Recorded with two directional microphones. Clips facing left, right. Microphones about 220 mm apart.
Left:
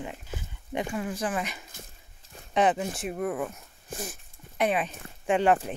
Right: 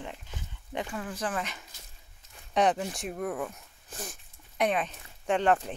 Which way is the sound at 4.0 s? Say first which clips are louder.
Left 1 dB; 5° left (ahead or behind).